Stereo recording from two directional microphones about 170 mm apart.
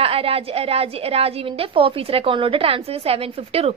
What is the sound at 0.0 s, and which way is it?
A woman's voice, 35° right (ahead or behind).